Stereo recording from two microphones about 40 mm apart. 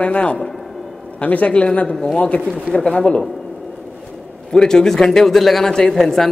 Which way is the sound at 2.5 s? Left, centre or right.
Left.